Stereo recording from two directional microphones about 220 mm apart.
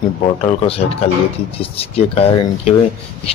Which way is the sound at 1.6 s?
25° left (ahead or behind).